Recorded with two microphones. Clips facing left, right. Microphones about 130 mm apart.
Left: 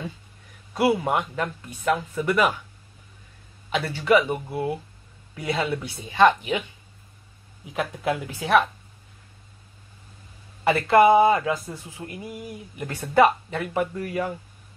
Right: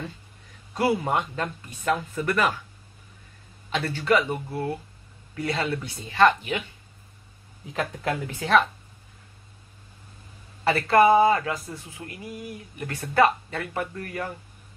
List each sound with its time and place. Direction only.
0.7 s speech: 15° left (ahead or behind)
3.7 s speech: 10° left (ahead or behind)
7.7 s speech: 10° left (ahead or behind)
10.6 s speech: 15° left (ahead or behind)